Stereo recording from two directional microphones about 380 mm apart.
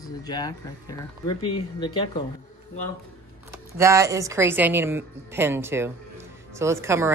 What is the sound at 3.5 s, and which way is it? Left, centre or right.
Speech, centre.